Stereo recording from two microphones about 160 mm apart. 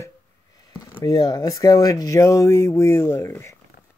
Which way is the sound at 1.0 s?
25° left (ahead or behind).